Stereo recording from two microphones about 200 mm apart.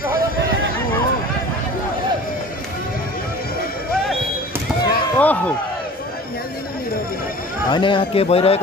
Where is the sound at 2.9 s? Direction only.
45° left (ahead or behind).